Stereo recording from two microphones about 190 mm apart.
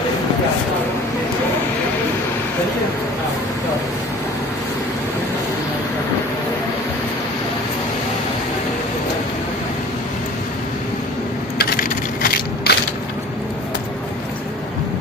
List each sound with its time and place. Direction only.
11.5 s crushing: 55° left (ahead or behind)